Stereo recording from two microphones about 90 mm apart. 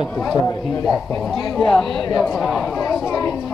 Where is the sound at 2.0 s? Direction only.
45° left (ahead or behind).